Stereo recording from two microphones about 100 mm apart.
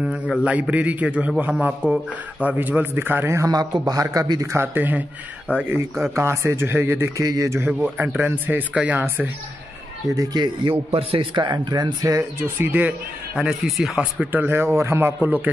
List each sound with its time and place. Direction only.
0.0 s speech: 5° right (ahead or behind)
2.4 s speech: 15° right (ahead or behind)
3.4 s a man's voice: 40° right (ahead or behind); by 5.8 s 15° right (ahead or behind)
6.1 s a man's voice: 30° right (ahead or behind)
7.6 s speech: 15° right (ahead or behind)
10.1 s speech: 40° right (ahead or behind)
10.9 s a man's voice: 70° right (ahead or behind)
11.3 s speech: 45° right (ahead or behind)
12.2 s speech: 20° right (ahead or behind); by 14.0 s centre (ahead or behind)
14.2 s speech: 20° right (ahead or behind)